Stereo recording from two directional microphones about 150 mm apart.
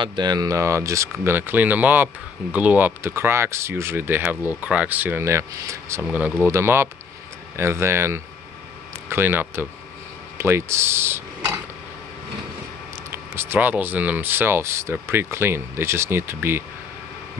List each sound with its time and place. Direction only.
0.0 s speech: 30° right (ahead or behind)
13.1 s speech: 15° right (ahead or behind)